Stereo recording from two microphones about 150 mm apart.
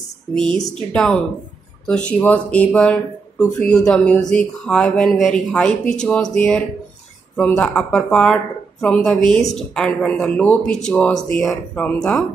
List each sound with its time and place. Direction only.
0.7 s speech: 5° left (ahead or behind)